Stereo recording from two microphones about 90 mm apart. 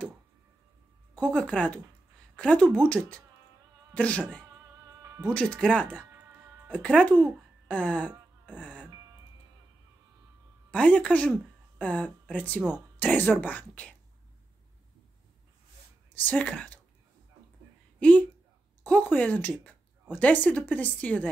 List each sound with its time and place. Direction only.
1.1 s speech: 10° left (ahead or behind)
10.7 s speech: 15° left (ahead or behind)
16.3 s speech: 15° left (ahead or behind)
17.9 s a woman's voice: 15° left (ahead or behind)